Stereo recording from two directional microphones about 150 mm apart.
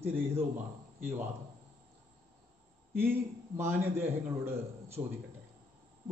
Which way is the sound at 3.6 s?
15° right (ahead or behind).